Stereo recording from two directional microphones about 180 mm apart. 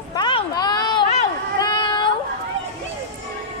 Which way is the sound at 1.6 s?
25° left (ahead or behind).